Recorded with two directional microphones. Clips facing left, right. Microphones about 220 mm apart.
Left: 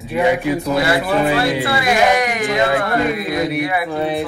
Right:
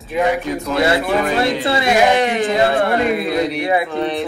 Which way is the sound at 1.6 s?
25° right (ahead or behind).